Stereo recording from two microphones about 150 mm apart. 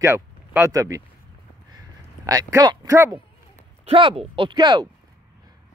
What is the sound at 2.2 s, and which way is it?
Speech, 25° right (ahead or behind).